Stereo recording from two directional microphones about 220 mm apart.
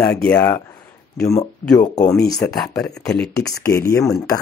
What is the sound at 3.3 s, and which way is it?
Speech, 15° left (ahead or behind).